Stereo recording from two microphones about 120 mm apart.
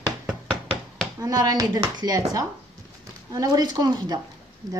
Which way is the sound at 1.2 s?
30° right (ahead or behind).